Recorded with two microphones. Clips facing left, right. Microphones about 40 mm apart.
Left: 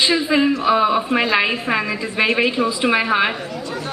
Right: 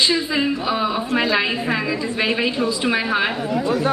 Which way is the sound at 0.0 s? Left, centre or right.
Centre.